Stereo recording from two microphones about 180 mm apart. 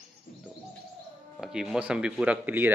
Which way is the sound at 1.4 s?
5° right (ahead or behind).